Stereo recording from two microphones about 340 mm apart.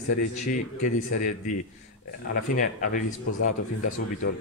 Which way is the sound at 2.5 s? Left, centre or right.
Left.